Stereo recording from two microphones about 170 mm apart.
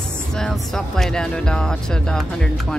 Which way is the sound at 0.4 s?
5° left (ahead or behind).